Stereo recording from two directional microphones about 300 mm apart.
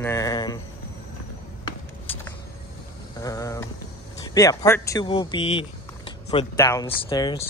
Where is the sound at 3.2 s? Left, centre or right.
Centre.